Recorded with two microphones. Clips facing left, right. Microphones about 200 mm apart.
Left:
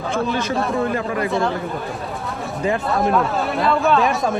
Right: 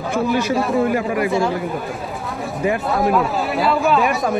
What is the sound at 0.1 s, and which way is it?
Speech, 5° right (ahead or behind).